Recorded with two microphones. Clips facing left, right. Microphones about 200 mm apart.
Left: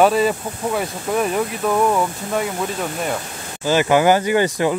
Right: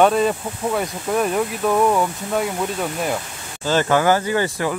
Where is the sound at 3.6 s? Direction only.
10° left (ahead or behind).